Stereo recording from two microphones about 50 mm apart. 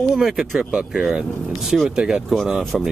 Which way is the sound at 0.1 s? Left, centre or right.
Centre.